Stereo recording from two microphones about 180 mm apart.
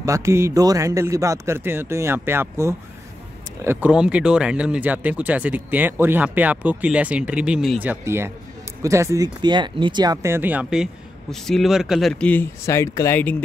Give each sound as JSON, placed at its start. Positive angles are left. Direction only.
{"t": 0.0, "sound": "speech", "side_deg": -15}